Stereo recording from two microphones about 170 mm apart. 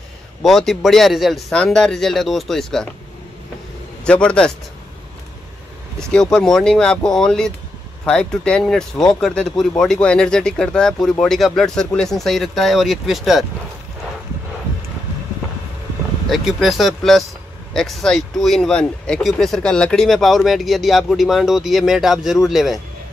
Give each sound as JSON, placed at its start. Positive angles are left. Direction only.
{"t": 0.4, "sound": "speech", "side_deg": 0}
{"t": 4.0, "sound": "speech", "side_deg": 5}
{"t": 5.9, "sound": "speech", "side_deg": 5}
{"t": 16.3, "sound": "speech", "side_deg": 0}